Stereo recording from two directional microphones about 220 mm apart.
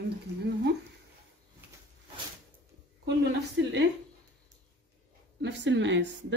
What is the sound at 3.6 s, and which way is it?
Speech, 55° right (ahead or behind).